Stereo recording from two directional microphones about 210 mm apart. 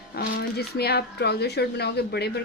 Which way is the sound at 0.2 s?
45° left (ahead or behind).